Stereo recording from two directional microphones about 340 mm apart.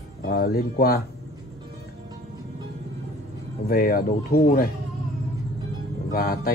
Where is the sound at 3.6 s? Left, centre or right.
Left.